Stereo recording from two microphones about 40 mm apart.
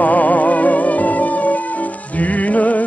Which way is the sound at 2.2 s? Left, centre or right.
Left.